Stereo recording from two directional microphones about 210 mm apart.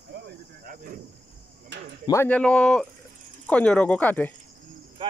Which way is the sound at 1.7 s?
55° right (ahead or behind).